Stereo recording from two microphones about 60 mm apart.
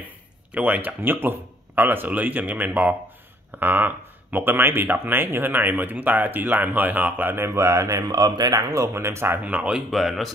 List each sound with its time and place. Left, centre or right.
0.5 s speech: right
8.9 s speech: right
9.4 s speech: right
9.8 s speech: centre